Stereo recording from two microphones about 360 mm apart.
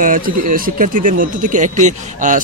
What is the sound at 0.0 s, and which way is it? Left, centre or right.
Speech, right.